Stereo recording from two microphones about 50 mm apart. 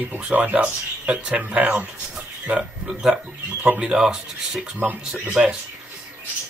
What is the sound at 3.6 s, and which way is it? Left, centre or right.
Speech, centre.